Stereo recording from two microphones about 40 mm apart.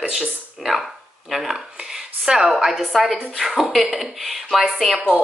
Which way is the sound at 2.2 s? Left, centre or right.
Centre.